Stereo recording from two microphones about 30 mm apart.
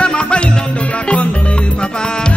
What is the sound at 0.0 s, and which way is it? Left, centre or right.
Music, left.